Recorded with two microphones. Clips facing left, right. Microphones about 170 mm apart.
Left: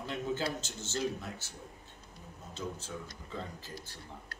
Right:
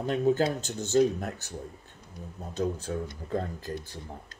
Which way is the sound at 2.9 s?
60° right (ahead or behind).